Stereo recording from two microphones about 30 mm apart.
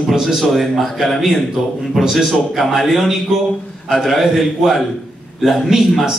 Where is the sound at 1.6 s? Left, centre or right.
Centre.